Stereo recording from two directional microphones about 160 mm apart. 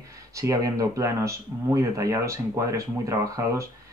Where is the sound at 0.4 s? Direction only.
20° right (ahead or behind).